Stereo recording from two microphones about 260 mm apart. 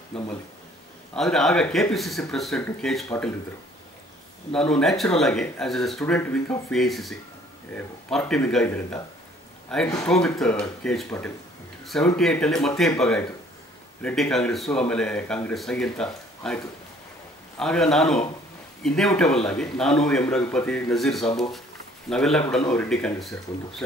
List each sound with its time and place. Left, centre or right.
0.1 s speech: centre
4.6 s speech: centre
14.0 s speech: centre